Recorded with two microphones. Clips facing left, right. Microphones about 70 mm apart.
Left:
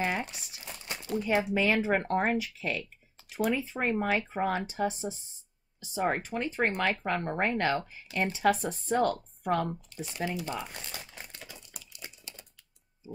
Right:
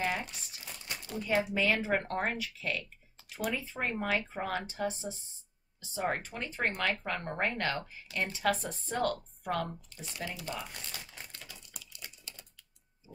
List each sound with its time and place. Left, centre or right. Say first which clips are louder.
0.0 s crumpling: left 3 dB; left
0.8 s speech: left 5 dB; centre
5.8 s speech: left 4 dB; centre
11.3 s typing: left 2 dB; left